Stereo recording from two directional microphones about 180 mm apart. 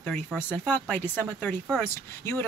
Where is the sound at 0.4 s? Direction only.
10° left (ahead or behind).